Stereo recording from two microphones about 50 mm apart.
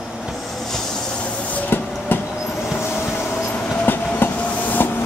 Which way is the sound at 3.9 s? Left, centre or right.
Left.